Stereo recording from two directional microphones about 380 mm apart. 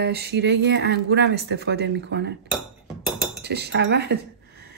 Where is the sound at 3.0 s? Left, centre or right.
Centre.